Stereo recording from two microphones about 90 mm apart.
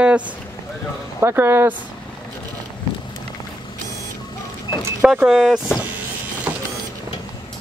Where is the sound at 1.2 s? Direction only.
25° right (ahead or behind).